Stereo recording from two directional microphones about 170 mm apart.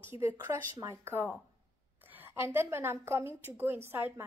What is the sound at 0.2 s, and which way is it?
A woman's voice, 15° right (ahead or behind).